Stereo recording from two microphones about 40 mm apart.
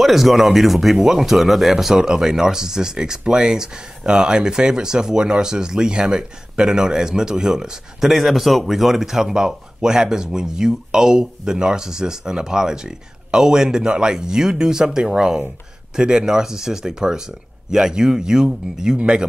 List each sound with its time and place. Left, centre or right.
0.0 s speech: centre; by 19.2 s right